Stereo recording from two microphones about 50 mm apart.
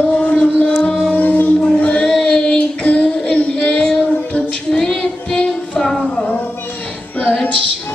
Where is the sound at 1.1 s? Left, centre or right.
Left.